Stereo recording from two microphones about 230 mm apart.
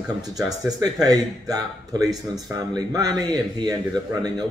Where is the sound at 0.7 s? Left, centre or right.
Centre.